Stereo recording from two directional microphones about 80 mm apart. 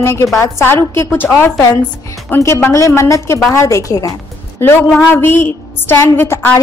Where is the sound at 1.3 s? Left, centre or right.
Left.